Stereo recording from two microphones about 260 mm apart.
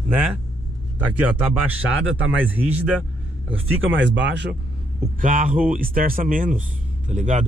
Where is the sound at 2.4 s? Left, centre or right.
Centre.